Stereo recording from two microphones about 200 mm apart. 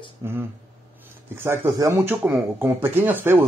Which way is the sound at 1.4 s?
15° right (ahead or behind).